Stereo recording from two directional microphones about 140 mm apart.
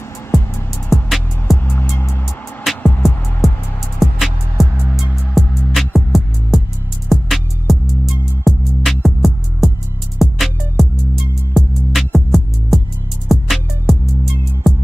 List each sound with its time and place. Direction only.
0.8 s music: centre (ahead or behind)
1.7 s music: 15° left (ahead or behind)
3.0 s music: centre (ahead or behind)